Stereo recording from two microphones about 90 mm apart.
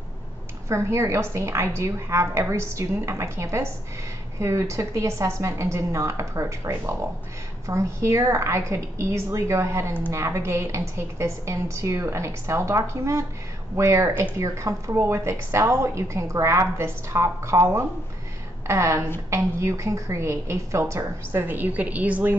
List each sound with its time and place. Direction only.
0.7 s a woman's voice: 30° right (ahead or behind)